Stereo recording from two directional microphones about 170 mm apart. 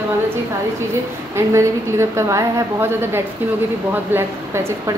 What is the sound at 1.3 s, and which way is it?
A woman's voice, 15° right (ahead or behind).